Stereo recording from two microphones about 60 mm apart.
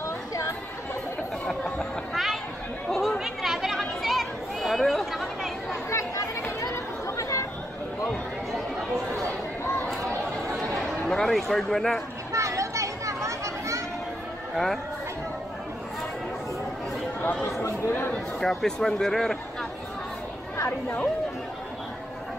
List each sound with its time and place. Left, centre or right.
1.5 s chatter: centre
3.2 s chatter: centre
5.7 s chatter: left
10.7 s a sound: centre
11.1 s speech: centre
12.3 s children playing: right
14.5 s speech: centre
17.2 s chatter: left
17.6 s chatter: left
18.4 s speech: centre
20.5 s speech: left